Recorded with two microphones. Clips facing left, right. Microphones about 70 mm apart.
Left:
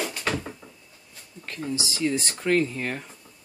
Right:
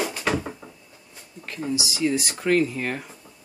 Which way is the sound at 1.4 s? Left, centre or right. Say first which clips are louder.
Right 3 dB; centre.